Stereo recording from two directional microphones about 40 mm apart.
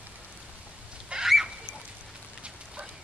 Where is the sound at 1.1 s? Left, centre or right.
Right.